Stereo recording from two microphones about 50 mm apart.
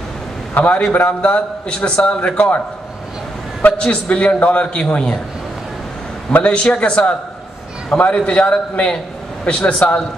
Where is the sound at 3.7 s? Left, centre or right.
Left.